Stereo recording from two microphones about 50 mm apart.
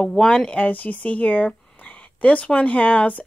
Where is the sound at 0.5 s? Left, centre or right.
Left.